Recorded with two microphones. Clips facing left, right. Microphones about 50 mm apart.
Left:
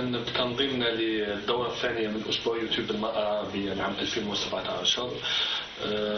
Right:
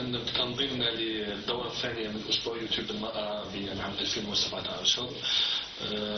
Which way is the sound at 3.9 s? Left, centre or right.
Left.